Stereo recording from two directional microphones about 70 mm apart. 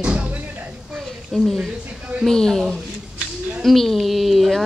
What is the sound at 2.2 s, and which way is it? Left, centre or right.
A woman's voice, centre.